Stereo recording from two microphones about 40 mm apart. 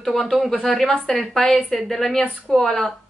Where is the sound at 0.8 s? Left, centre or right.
Centre.